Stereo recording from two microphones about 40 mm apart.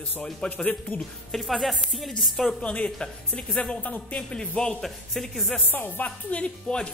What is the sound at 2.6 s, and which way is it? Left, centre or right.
Speech, left.